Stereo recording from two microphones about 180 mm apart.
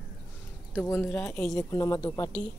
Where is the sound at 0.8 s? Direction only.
10° left (ahead or behind).